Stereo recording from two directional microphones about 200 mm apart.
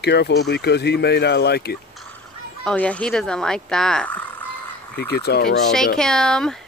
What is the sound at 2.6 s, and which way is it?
Fowl, 5° left (ahead or behind).